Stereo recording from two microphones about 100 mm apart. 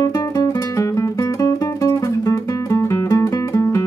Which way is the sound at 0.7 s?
30° left (ahead or behind).